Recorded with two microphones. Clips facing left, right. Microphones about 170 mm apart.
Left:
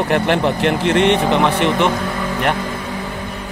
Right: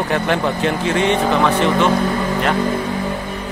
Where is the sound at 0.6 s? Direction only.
70° left (ahead or behind).